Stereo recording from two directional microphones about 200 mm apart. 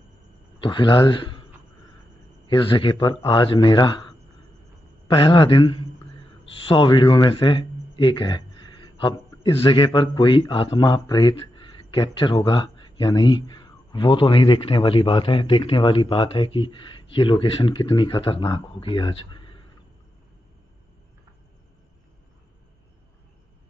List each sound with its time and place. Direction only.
0.6 s a man's voice: 25° left (ahead or behind)
2.4 s a man's voice: 25° left (ahead or behind)
5.1 s a man's voice: 25° left (ahead or behind)